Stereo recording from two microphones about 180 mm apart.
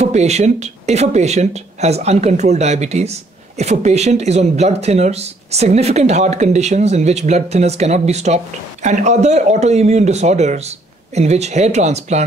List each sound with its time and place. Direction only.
0.0 s speech: 40° right (ahead or behind)